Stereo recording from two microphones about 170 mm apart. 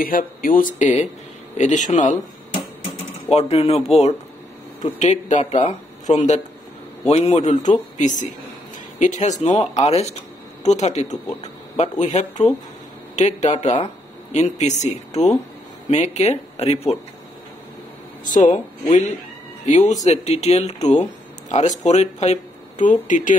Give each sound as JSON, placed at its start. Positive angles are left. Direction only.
{"t": 0.0, "sound": "speech", "side_deg": 55}
{"t": 3.3, "sound": "speech", "side_deg": 40}
{"t": 4.8, "sound": "speech", "side_deg": 40}
{"t": 18.2, "sound": "speech", "side_deg": 45}